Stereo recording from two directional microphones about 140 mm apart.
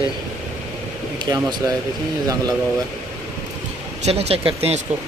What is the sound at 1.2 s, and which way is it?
Speech, 30° right (ahead or behind).